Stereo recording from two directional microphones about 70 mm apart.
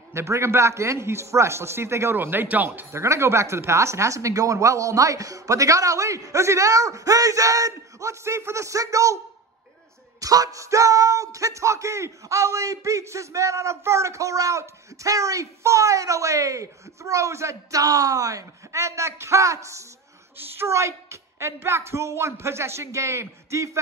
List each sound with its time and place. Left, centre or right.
0.1 s a woman's voice: right
2.9 s speech: right
10.2 s a woman's voice: right